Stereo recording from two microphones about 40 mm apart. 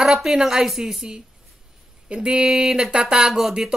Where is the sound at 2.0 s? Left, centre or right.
Right.